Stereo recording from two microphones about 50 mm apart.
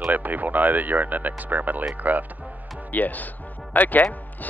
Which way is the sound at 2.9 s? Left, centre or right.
Left.